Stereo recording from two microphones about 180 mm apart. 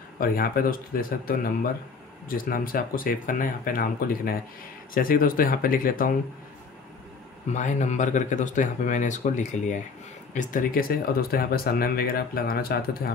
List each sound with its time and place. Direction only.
0.2 s speech: 55° left (ahead or behind)
7.5 s speech: 40° left (ahead or behind); by 13.1 s 55° left (ahead or behind)